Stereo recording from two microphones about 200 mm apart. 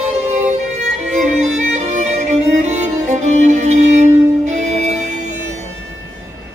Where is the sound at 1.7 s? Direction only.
35° right (ahead or behind).